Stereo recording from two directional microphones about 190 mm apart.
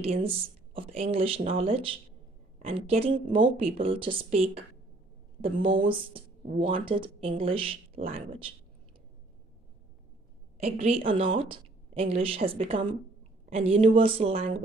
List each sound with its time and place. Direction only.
0.0 s a woman's voice: 30° right (ahead or behind)
10.6 s a woman's voice: 30° right (ahead or behind)